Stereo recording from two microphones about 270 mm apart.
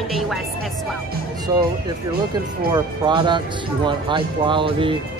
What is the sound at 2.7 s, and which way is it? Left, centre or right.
Speech, centre.